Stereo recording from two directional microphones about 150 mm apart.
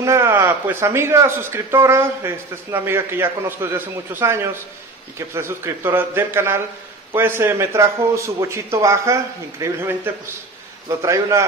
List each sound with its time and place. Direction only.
0.0 s a man's voice: 20° right (ahead or behind)